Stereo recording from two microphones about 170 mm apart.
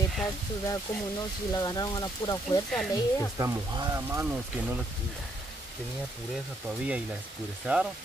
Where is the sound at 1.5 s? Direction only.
25° left (ahead or behind).